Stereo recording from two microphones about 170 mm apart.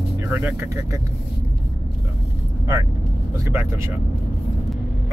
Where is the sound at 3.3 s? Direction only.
15° right (ahead or behind).